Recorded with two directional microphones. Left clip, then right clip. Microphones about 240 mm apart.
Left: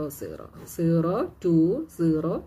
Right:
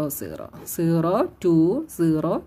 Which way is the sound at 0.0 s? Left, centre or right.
Right.